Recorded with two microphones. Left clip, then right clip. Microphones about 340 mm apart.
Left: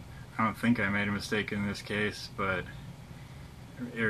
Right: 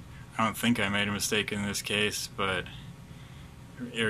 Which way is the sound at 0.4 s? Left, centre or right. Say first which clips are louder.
Right 1 dB; centre.